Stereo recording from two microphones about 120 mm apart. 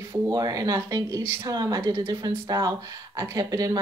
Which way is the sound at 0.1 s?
30° right (ahead or behind).